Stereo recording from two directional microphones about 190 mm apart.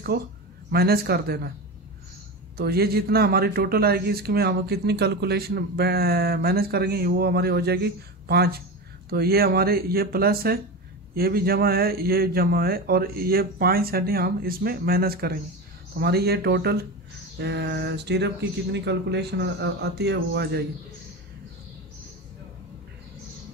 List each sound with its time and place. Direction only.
0.7 s a man's voice: 55° right (ahead or behind)
2.5 s a man's voice: 55° right (ahead or behind)